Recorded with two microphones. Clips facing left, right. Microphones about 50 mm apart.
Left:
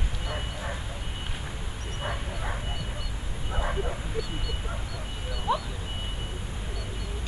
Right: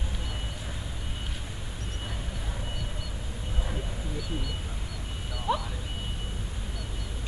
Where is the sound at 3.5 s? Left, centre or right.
Left.